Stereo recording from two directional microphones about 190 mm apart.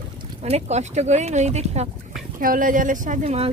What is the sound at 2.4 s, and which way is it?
Speech, 45° right (ahead or behind).